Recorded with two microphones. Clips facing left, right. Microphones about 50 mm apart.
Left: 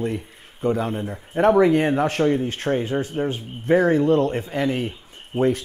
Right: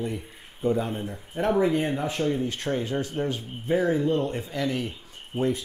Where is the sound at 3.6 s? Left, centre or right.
Left.